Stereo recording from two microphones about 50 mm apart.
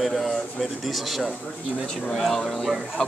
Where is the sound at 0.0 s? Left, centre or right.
Centre.